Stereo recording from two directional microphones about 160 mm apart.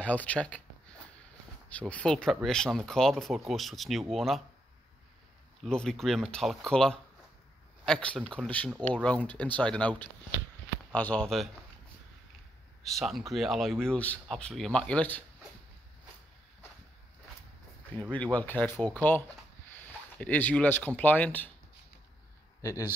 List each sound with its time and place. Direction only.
0.0 s speech: 10° left (ahead or behind)
1.7 s speech: 10° left (ahead or behind)
5.7 s speech: 5° left (ahead or behind)
12.8 s speech: centre (ahead or behind)
18.1 s speech: 10° left (ahead or behind)
22.6 s speech: 20° left (ahead or behind)